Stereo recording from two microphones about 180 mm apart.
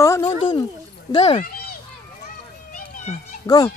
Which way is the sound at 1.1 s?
35° left (ahead or behind).